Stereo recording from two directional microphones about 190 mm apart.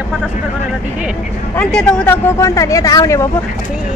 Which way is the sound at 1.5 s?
5° left (ahead or behind).